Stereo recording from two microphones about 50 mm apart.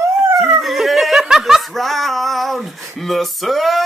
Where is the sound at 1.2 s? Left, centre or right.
Centre.